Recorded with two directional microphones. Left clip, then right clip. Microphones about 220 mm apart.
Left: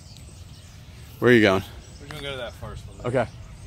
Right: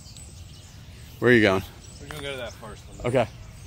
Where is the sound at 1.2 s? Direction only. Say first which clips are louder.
Left 1 dB; 10° left (ahead or behind).